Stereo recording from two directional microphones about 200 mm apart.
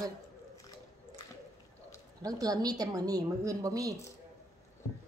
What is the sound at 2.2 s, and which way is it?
A woman's voice, 20° right (ahead or behind).